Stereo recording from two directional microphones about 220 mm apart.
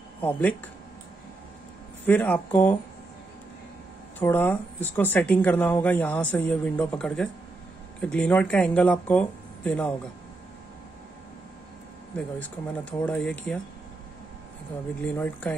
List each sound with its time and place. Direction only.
0.2 s speech: 10° left (ahead or behind)
2.0 s speech: 5° left (ahead or behind)
4.2 s speech: 10° left (ahead or behind)
13.0 s speech: 5° left (ahead or behind)
15.0 s speech: 5° left (ahead or behind)